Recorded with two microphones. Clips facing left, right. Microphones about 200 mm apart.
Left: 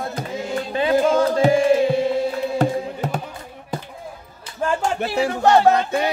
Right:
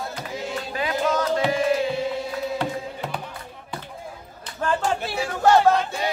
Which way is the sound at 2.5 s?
45° left (ahead or behind).